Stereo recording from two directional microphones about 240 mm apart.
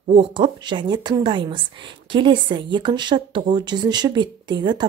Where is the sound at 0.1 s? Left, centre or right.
Right.